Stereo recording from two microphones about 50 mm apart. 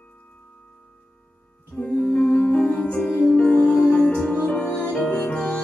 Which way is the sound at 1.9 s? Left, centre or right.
Left.